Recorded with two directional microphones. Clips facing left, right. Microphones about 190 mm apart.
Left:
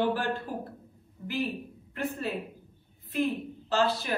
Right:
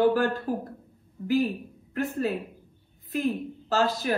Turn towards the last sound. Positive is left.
turn(degrees=-40)  # may be behind; listen again after turning